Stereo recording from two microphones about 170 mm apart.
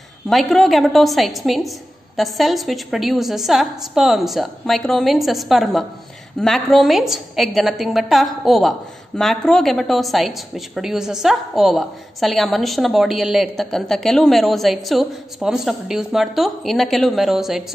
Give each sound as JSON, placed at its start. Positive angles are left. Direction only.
{"t": 0.3, "sound": "a woman's voice", "side_deg": 0}